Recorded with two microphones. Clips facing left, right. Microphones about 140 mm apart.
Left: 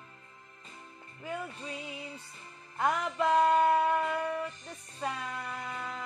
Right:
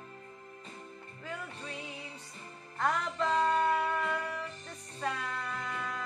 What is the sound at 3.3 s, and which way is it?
Music, 65° left (ahead or behind).